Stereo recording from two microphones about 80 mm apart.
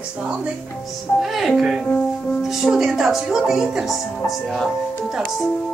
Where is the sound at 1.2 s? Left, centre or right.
Centre.